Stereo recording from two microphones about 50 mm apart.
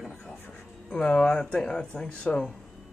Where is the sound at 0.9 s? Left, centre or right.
Centre.